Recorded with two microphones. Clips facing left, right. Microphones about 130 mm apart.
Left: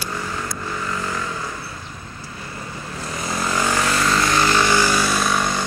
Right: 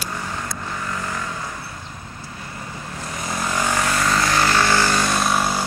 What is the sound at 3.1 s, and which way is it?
Vehicle, 30° left (ahead or behind).